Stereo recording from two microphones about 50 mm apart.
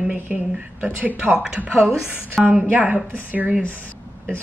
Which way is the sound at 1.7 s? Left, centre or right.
Centre.